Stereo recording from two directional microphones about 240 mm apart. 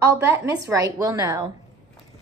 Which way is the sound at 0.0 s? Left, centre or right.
Centre.